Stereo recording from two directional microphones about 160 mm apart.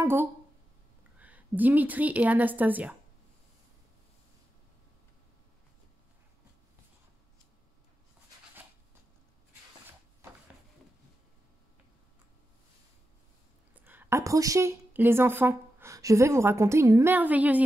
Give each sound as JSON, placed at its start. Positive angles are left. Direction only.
{"t": 0.0, "sound": "a sound", "side_deg": -15}
{"t": 1.1, "sound": "a woman's voice", "side_deg": -10}
{"t": 13.8, "sound": "a woman's voice", "side_deg": -15}